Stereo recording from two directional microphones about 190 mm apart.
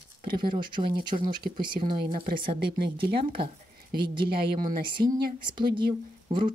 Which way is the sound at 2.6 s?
55° right (ahead or behind).